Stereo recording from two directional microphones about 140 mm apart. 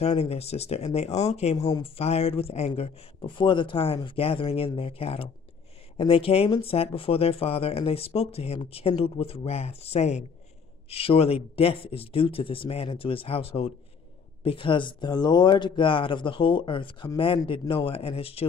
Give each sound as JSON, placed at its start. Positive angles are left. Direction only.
{"t": 0.0, "sound": "speech", "side_deg": 45}